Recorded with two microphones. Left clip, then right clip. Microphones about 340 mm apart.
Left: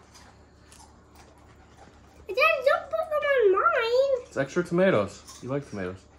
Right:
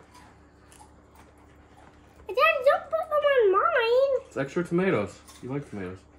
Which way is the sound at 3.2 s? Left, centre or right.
Right.